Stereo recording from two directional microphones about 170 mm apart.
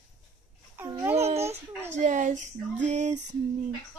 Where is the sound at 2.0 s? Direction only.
45° right (ahead or behind).